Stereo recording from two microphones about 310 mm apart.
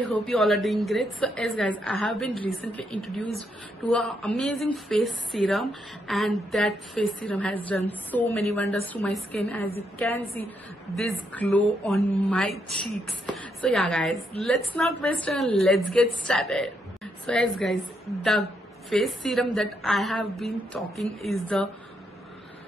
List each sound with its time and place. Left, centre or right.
0.1 s speech: centre
18.9 s speech: centre